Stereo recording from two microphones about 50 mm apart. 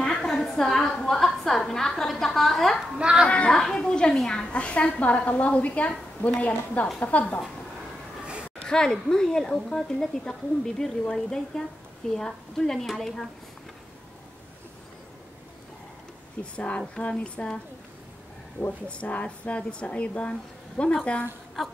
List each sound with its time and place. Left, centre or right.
0.0 s a sound: centre
3.0 s speech: centre
3.3 s a woman's voice: left
3.5 s a woman's voice: centre; by 7.3 s left
8.6 s a woman's voice: centre
16.5 s a woman's voice: left
18.9 s a woman's voice: left